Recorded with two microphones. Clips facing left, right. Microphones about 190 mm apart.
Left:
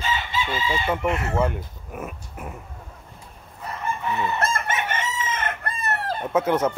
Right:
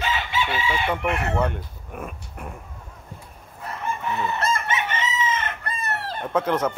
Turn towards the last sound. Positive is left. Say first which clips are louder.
# left 2 dB
turn(degrees=10)  # may be behind; listen again after turning